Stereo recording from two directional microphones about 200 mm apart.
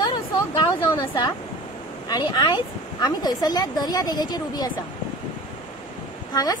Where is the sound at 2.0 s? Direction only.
20° left (ahead or behind).